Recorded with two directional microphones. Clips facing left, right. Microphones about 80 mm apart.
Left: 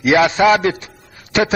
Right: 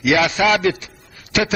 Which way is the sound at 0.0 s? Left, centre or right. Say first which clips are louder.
Left 4 dB; left.